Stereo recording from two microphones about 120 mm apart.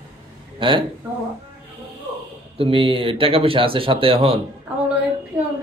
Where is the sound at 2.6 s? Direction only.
50° right (ahead or behind).